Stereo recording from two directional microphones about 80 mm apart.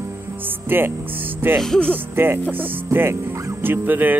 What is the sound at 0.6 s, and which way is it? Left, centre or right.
Speech, right.